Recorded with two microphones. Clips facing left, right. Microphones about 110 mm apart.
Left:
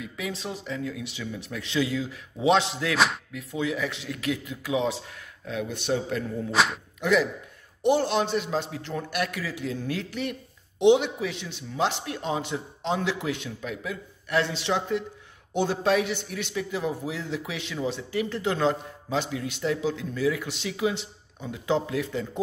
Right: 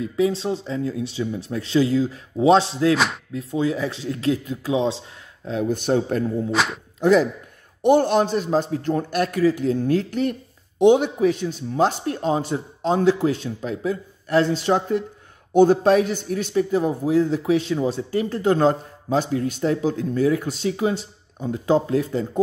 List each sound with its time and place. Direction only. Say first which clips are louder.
0.0 s a man's voice: right 12 dB; 30° right (ahead or behind)
6.5 s speech: left 2 dB; centre (ahead or behind)
7.0 s speech: right 7 dB; 35° right (ahead or behind)
7.8 s a man's voice: right 6 dB; 50° right (ahead or behind)